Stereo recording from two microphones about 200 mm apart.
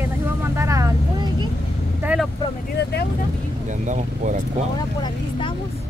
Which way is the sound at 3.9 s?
40° right (ahead or behind).